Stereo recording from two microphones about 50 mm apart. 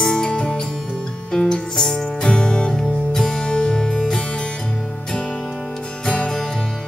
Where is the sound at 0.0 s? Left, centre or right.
Centre.